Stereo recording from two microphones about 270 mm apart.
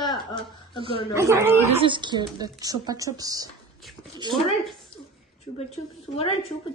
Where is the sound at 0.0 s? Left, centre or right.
Centre.